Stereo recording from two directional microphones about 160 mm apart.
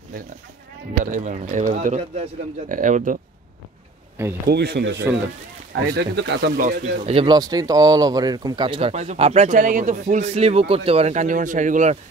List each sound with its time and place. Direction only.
1.1 s speech: 50° right (ahead or behind)
4.5 s speech: 90° right
6.6 s speech: 55° right (ahead or behind)
7.1 s speech: 35° right (ahead or behind)
7.3 s speech: 25° right (ahead or behind)
8.9 s speech: 40° right (ahead or behind)